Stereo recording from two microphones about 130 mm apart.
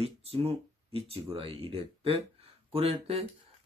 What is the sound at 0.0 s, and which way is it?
Speech, 50° right (ahead or behind).